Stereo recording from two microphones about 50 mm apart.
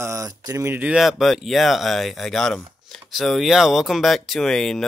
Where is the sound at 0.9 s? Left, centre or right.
Centre.